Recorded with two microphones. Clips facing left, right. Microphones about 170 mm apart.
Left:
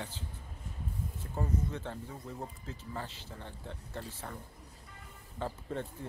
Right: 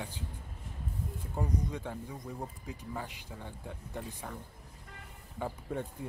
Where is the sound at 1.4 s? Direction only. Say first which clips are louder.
Even; 15° right (ahead or behind).